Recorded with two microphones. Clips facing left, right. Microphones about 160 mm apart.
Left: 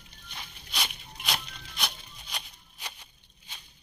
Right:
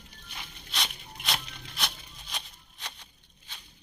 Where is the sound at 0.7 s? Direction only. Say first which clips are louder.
Even; centre (ahead or behind).